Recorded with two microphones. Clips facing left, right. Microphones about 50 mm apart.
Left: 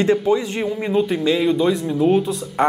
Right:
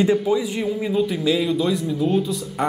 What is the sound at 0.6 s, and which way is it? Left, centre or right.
A man's voice, left.